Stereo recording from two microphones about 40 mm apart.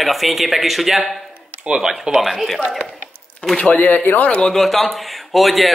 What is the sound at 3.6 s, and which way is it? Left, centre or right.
Speech, left.